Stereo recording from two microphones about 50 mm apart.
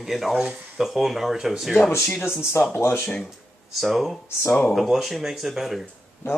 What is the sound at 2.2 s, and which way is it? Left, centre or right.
Speech, left.